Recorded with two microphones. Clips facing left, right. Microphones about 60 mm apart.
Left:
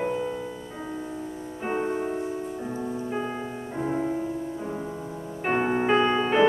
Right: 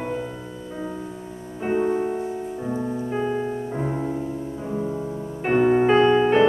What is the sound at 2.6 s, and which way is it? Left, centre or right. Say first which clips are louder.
Keyboard: right 4 dB; centre.